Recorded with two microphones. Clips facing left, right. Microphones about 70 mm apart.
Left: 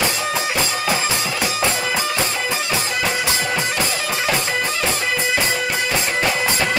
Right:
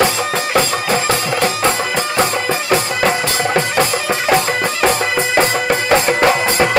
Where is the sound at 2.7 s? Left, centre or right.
Right.